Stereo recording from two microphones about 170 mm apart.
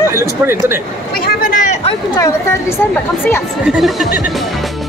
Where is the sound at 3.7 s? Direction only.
Centre (ahead or behind).